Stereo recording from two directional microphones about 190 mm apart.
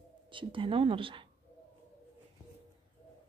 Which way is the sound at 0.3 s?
25° right (ahead or behind).